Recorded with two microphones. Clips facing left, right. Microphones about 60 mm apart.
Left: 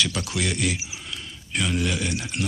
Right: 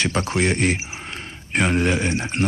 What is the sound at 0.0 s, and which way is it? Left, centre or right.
Speech, right.